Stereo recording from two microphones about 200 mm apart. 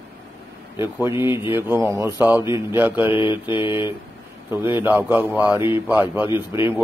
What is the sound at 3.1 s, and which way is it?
Mantra, 25° left (ahead or behind).